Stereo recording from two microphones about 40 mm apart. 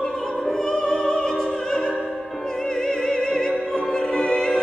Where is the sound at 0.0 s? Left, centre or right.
Centre.